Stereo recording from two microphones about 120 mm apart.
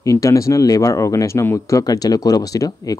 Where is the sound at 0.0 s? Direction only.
25° left (ahead or behind).